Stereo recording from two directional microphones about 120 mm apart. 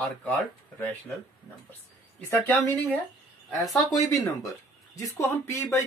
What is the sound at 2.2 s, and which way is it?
Speech, 15° left (ahead or behind).